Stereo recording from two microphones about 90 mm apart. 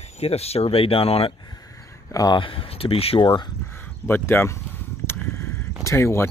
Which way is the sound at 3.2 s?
55° left (ahead or behind).